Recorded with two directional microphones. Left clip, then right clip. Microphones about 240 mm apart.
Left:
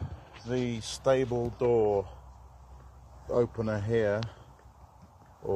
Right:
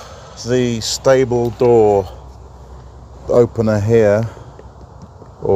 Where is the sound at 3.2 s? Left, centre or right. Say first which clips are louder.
Right 16 dB; centre.